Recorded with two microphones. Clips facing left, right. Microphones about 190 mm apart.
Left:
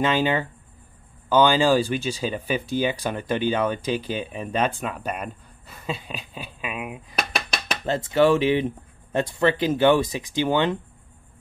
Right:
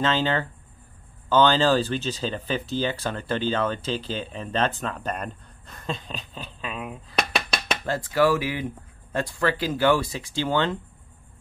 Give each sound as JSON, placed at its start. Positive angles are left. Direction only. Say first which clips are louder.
{"t": 0.0, "sound": "speech", "louder": "left 2 dB", "side_deg": 15}